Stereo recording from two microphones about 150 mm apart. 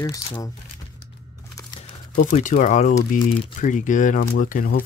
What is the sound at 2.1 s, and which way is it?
Speech, 55° left (ahead or behind).